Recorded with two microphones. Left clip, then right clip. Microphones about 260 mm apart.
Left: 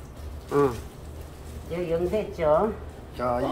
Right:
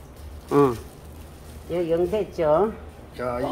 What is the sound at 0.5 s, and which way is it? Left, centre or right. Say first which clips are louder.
Speech: right 4 dB; right.